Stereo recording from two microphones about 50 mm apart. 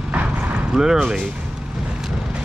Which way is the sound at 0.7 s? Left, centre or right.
Centre.